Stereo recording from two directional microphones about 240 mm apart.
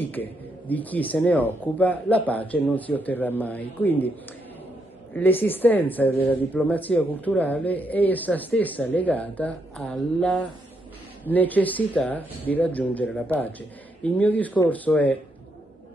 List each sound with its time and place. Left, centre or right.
0.0 s a woman's voice: centre
5.1 s a woman's voice: centre